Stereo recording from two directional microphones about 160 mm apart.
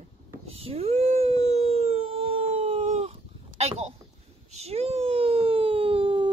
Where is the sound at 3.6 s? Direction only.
40° right (ahead or behind).